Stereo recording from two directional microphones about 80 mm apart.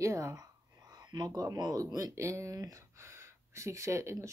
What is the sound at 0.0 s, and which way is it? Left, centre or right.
Speech, right.